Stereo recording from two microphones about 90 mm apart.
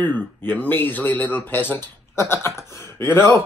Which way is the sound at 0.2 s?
20° left (ahead or behind).